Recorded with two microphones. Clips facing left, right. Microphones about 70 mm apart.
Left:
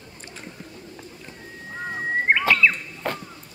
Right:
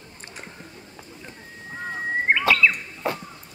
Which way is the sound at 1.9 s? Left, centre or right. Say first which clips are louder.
Left 1 dB; centre.